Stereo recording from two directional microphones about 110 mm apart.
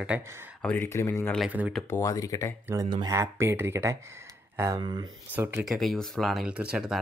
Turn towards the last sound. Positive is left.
turn(degrees=-5)  # may be behind; listen again after turning